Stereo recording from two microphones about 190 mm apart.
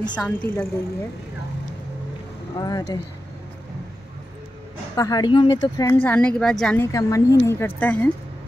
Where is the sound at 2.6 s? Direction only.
20° left (ahead or behind).